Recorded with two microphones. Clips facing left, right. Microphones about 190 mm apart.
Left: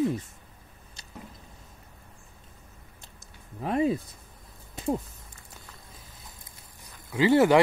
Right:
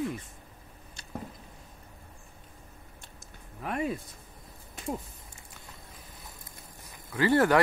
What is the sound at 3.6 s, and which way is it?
Speech, 30° left (ahead or behind).